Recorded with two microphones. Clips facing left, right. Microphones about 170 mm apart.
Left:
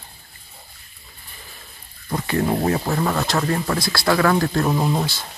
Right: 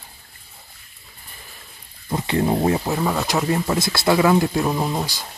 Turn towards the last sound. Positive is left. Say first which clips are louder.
# left 1 dB
turn(degrees=0)  # may be behind; listen again after turning